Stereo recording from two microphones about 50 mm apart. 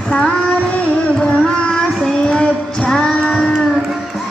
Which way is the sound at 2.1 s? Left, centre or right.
Centre.